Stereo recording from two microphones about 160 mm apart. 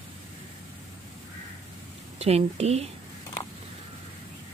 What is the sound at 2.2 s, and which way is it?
Speech, 40° right (ahead or behind).